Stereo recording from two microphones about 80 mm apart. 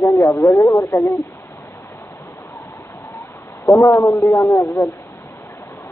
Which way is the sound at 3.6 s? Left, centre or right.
Left.